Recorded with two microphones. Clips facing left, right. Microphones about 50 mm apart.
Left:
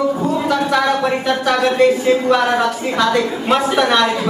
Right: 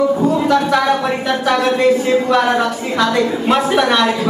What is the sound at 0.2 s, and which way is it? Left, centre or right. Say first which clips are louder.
Speech: right 3 dB; centre.